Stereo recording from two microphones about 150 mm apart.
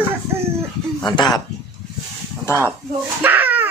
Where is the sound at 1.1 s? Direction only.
30° left (ahead or behind).